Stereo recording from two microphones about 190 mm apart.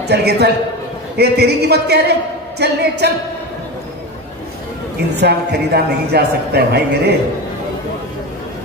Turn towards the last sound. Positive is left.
turn(degrees=-60)  # may be behind; listen again after turning